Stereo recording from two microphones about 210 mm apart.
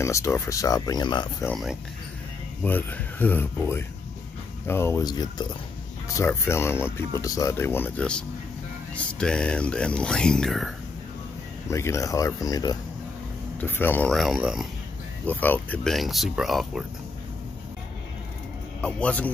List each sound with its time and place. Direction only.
0.0 s speech: 15° left (ahead or behind)
1.5 s speech: centre (ahead or behind)
11.7 s speech: 15° left (ahead or behind); by 14.7 s centre (ahead or behind)
15.2 s speech: 10° left (ahead or behind)
18.8 s speech: 5° left (ahead or behind)